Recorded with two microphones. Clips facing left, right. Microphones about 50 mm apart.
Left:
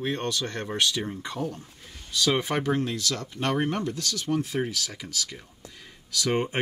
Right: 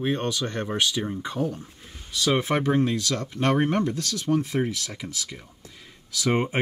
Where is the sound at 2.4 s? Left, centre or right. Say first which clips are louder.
Right 4 dB; centre.